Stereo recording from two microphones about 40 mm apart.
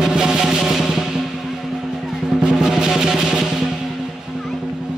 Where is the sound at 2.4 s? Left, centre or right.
Centre.